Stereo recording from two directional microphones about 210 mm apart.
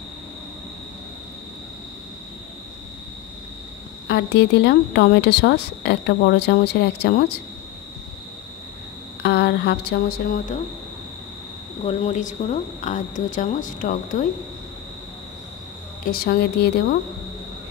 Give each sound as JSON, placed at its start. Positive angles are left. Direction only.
{"t": 4.1, "sound": "speech", "side_deg": 55}
{"t": 9.2, "sound": "speech", "side_deg": 50}
{"t": 11.8, "sound": "speech", "side_deg": 30}
{"t": 16.0, "sound": "speech", "side_deg": 45}